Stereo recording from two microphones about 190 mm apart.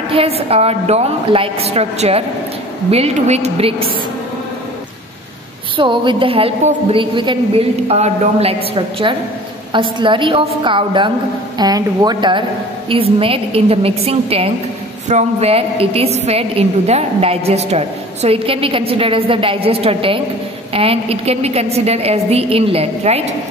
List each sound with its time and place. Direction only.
0.1 s a woman's voice: 30° right (ahead or behind)
5.8 s a woman's voice: 25° right (ahead or behind)
9.7 s a woman's voice: 25° right (ahead or behind)